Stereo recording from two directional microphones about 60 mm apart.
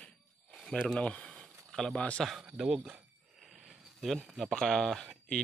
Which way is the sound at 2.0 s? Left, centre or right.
Left.